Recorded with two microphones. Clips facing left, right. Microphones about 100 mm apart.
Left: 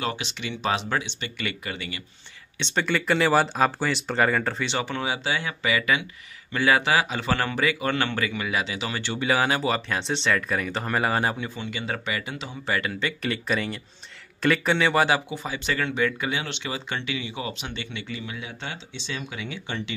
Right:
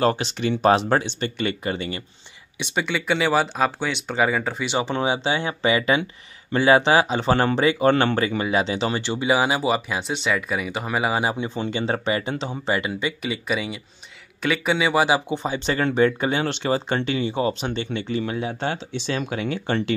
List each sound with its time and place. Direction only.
0.0 s speech: 35° right (ahead or behind)
2.6 s speech: 5° right (ahead or behind)
4.6 s speech: 20° right (ahead or behind); by 19.8 s 50° right (ahead or behind)